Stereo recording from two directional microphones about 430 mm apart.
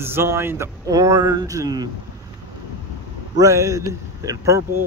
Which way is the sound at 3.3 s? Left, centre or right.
Centre.